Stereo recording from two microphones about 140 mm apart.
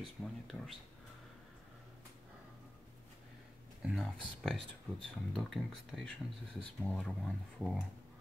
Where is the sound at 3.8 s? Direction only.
5° right (ahead or behind).